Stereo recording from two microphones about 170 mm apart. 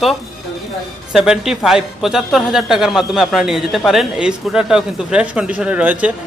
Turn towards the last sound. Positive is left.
turn(degrees=-5)  # may be behind; listen again after turning